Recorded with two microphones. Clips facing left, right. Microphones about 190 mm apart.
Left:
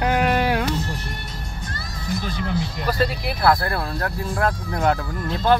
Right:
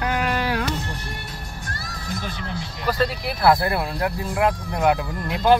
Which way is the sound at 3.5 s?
15° right (ahead or behind).